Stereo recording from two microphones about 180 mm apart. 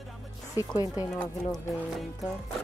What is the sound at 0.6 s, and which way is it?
Speech, 20° left (ahead or behind).